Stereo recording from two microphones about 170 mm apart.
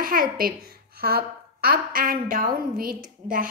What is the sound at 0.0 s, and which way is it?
A woman's voice, 55° right (ahead or behind).